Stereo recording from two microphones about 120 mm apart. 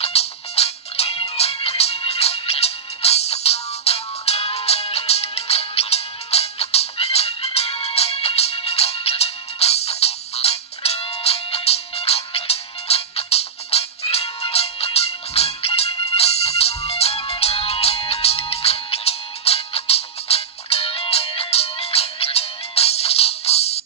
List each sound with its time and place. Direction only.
0.0 s music: 60° left (ahead or behind)